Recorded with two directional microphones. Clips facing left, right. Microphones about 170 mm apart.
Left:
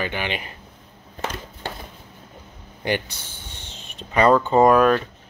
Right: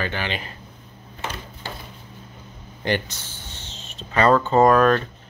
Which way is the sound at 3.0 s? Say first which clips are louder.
Right 1 dB; 10° left (ahead or behind).